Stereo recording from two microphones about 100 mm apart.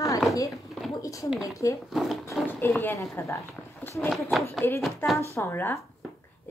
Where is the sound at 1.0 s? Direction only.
35° left (ahead or behind).